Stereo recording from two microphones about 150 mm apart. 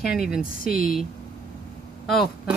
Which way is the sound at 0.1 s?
5° right (ahead or behind).